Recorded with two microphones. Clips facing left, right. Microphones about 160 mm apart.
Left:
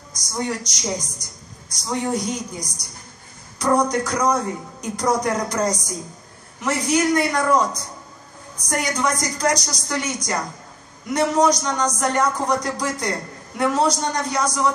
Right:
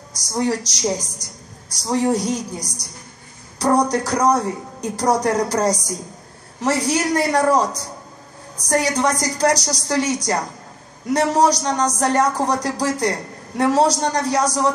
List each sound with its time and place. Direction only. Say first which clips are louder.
0.3 s a man's voice: right 5 dB; 35° right (ahead or behind)